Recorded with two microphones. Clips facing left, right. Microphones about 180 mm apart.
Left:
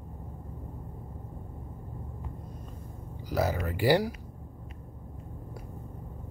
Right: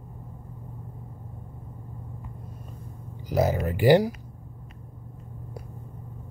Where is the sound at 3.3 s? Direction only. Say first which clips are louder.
Right 5 dB; 20° right (ahead or behind).